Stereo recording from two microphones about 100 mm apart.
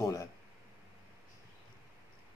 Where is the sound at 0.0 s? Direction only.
30° left (ahead or behind).